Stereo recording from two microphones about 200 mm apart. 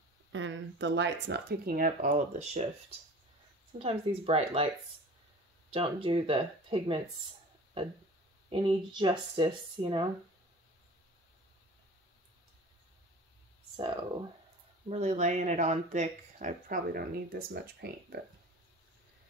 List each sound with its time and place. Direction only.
0.3 s speech: 70° right (ahead or behind); by 2.6 s 35° right (ahead or behind)
3.7 s speech: 30° right (ahead or behind)
5.7 s speech: 25° right (ahead or behind)
8.5 s speech: 20° right (ahead or behind)
14.9 s speech: 35° right (ahead or behind); by 18.2 s 55° right (ahead or behind)